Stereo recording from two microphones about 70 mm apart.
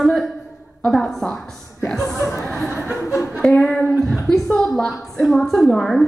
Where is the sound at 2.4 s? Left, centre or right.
Centre.